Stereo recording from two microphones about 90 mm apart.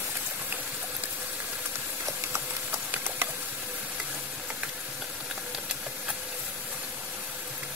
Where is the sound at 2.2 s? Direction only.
30° right (ahead or behind).